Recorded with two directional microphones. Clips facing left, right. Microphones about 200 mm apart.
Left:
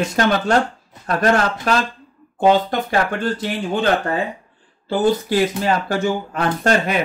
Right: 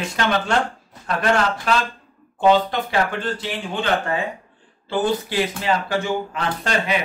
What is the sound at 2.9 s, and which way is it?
Speech, 45° left (ahead or behind).